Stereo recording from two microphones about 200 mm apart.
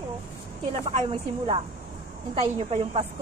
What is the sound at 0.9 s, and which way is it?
A woman's voice, 25° right (ahead or behind).